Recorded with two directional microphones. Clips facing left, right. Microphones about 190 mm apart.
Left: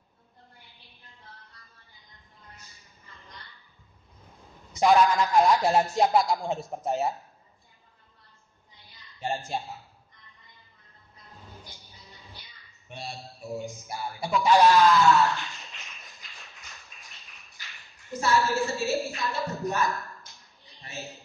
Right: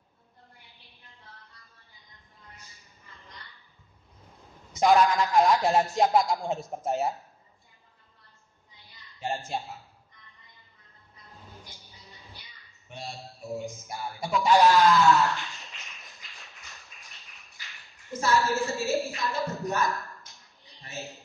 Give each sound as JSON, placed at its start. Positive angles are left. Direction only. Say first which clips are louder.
{"t": 2.5, "sound": "a sound", "louder": "even", "side_deg": 0}
{"t": 4.7, "sound": "speech", "louder": "left 1 dB", "side_deg": 0}
{"t": 9.2, "sound": "speech", "louder": "left 1 dB", "side_deg": 15}
{"t": 9.5, "sound": "speech", "louder": "left 1 dB", "side_deg": 0}
{"t": 11.8, "sound": "music", "louder": "even", "side_deg": 0}
{"t": 13.0, "sound": "a sound", "louder": "left 1 dB", "side_deg": 0}
{"t": 19.2, "sound": "speech", "louder": "even", "side_deg": 0}
{"t": 19.8, "sound": "dog", "louder": "even", "side_deg": 0}